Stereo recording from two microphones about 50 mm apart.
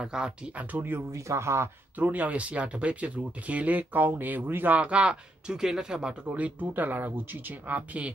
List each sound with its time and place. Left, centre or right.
0.0 s speech: centre
0.5 s speech: right
1.1 s speech: right
2.0 s speech: right
4.7 s speech: right
6.3 s speech: right